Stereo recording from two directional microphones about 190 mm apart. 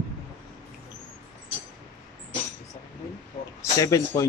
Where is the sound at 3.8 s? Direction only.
20° left (ahead or behind).